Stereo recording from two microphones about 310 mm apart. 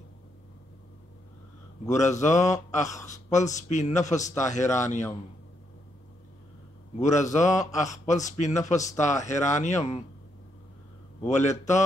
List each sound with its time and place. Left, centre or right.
1.9 s a man's voice: left
7.0 s a man's voice: left
11.2 s a man's voice: left